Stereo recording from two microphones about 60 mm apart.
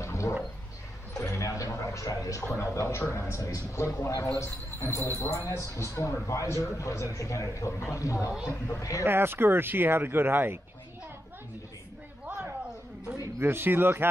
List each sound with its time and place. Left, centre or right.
0.0 s a sound: left
2.5 s a man's voice: left
9.0 s speech: right
13.4 s speech: right